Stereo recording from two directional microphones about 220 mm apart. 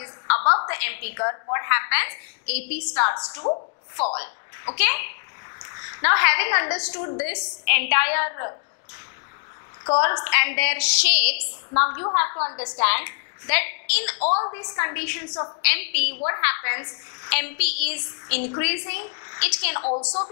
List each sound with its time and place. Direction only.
0.0 s a sound: 15° left (ahead or behind)
0.7 s a woman's voice: 15° left (ahead or behind)
4.7 s a woman's voice: 15° left (ahead or behind)
6.9 s a woman's voice: 20° left (ahead or behind)
10.0 s a woman's voice: 15° left (ahead or behind)
14.2 s a woman's voice: 30° left (ahead or behind)
14.5 s a woman's voice: 20° left (ahead or behind)
19.8 s a woman's voice: 30° left (ahead or behind)